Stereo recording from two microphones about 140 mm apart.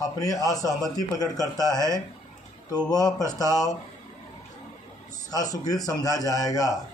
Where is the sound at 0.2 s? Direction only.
25° left (ahead or behind).